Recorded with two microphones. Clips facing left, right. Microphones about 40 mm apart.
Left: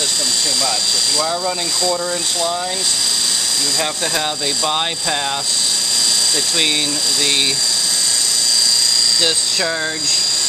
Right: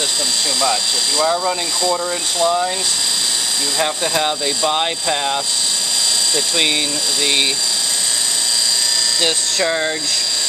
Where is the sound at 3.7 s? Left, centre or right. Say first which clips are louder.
Right 4 dB; centre.